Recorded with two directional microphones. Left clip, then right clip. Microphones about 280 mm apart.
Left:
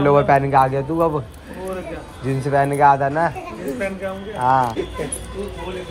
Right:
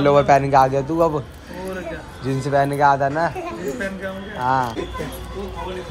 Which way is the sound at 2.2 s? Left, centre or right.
Centre.